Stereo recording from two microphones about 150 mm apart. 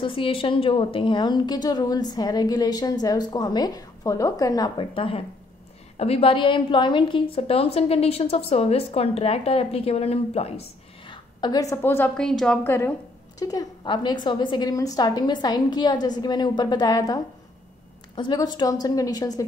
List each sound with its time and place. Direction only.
0.0 s a woman's voice: 35° left (ahead or behind)
11.4 s a woman's voice: 25° left (ahead or behind)
12.2 s a woman's voice: 5° left (ahead or behind)
12.6 s a woman's voice: 15° left (ahead or behind)
13.4 s a woman's voice: 25° left (ahead or behind)